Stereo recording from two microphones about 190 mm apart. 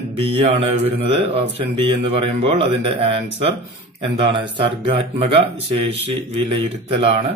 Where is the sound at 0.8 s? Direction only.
30° right (ahead or behind).